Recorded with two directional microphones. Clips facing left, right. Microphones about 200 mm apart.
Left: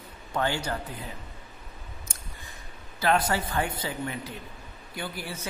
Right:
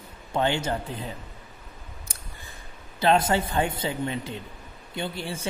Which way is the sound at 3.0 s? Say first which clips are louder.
Right 4 dB; 25° right (ahead or behind).